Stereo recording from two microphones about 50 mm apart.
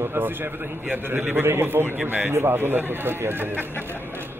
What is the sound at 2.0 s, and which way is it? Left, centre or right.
Speech, right.